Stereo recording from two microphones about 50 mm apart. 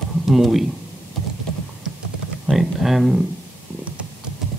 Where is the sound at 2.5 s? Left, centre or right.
Centre.